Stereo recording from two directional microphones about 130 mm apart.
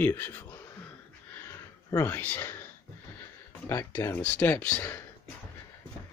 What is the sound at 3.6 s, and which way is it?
Speech, 20° left (ahead or behind).